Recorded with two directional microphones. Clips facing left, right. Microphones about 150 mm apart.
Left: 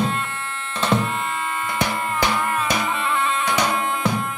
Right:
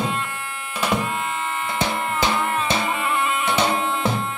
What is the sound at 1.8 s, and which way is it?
Music, 20° right (ahead or behind).